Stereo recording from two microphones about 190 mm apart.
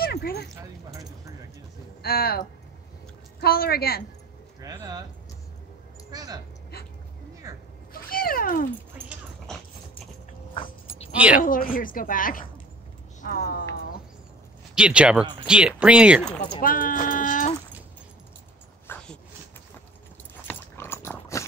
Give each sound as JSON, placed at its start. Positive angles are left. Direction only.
{"t": 0.0, "sound": "a sound", "side_deg": 55}
{"t": 2.0, "sound": "a woman's voice", "side_deg": 55}
{"t": 4.6, "sound": "speech", "side_deg": -20}
{"t": 6.1, "sound": "speech", "side_deg": -20}
{"t": 7.5, "sound": "a sound", "side_deg": -15}
{"t": 7.9, "sound": "cat", "side_deg": 50}
{"t": 9.5, "sound": "dog", "side_deg": 5}
{"t": 10.5, "sound": "dog", "side_deg": 25}
{"t": 11.1, "sound": "speech", "side_deg": -5}
{"t": 11.4, "sound": "a woman's voice", "side_deg": 45}
{"t": 14.8, "sound": "speech", "side_deg": -5}
{"t": 16.6, "sound": "a woman's voice", "side_deg": 45}
{"t": 18.9, "sound": "dog", "side_deg": 10}
{"t": 20.4, "sound": "dog", "side_deg": 10}